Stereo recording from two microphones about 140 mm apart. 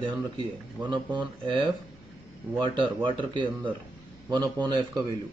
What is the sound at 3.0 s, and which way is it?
A man's voice, 35° right (ahead or behind).